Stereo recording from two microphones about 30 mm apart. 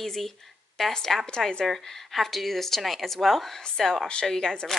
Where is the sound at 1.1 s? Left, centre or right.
Centre.